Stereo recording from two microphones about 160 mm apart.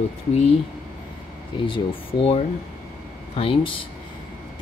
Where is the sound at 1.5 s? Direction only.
30° left (ahead or behind).